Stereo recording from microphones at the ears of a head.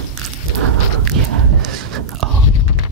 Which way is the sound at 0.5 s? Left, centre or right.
Right.